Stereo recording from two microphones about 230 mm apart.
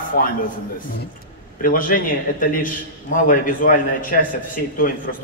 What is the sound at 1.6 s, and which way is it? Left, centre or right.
A man's voice, left.